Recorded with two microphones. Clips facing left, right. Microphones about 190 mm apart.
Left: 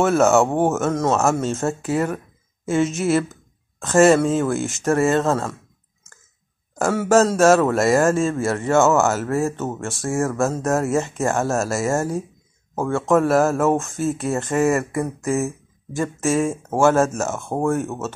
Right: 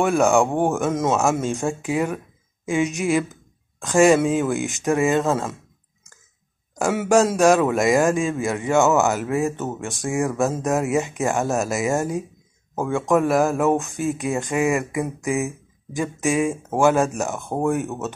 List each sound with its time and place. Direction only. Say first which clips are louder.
0.0 s speech: left 2 dB; 15° right (ahead or behind)
5.2 s music: left 1 dB; 5° right (ahead or behind)
7.0 s speech: left 1 dB; 15° right (ahead or behind)
13.6 s music: left 1 dB; centre (ahead or behind)
13.9 s speech: left 1 dB; 15° right (ahead or behind)